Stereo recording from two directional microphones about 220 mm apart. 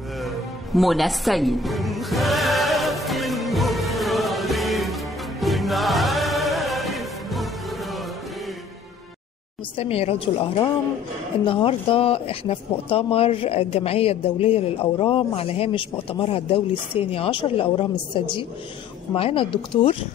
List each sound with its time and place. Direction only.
0.7 s music: centre (ahead or behind)
9.8 s speech: 25° left (ahead or behind)